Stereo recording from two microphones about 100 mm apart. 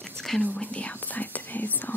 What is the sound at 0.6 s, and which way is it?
Speech, 15° left (ahead or behind).